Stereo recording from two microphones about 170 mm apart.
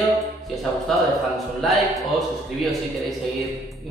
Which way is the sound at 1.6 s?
Centre (ahead or behind).